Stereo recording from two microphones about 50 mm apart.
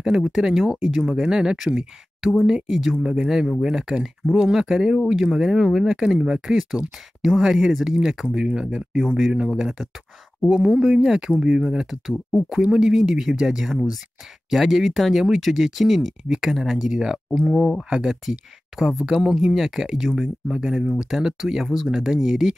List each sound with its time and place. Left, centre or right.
0.0 s speech: centre
9.5 s speech: centre
10.5 s speech: centre